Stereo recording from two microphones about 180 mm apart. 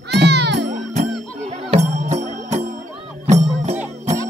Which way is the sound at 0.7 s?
40° right (ahead or behind).